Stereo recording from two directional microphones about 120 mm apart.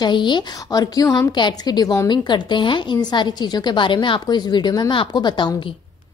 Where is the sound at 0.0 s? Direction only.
40° left (ahead or behind).